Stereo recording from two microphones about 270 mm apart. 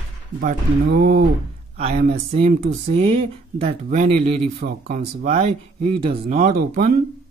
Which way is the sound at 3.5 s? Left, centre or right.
Right.